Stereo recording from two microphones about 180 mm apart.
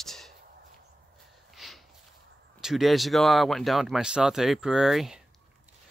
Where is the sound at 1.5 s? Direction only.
Centre (ahead or behind).